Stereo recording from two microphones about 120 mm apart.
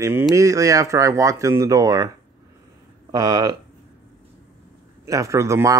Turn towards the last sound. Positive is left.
turn(degrees=-25)  # may be behind; listen again after turning